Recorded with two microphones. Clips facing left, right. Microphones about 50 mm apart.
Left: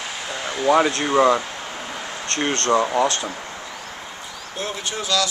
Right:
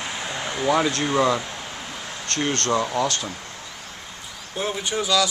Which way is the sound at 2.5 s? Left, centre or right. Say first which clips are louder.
Left 4 dB; centre.